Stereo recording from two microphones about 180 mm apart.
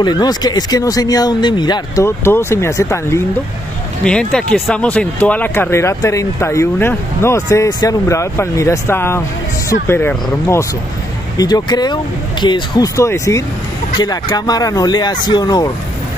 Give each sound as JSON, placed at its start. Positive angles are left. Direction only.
{"t": 0.0, "sound": "speech", "side_deg": 20}
{"t": 4.0, "sound": "speech", "side_deg": 5}